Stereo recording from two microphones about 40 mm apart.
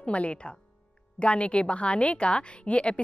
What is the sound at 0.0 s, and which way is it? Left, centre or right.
A woman's voice, left.